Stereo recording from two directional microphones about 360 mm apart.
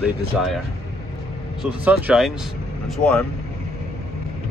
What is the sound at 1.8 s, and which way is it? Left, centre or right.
Speech, centre.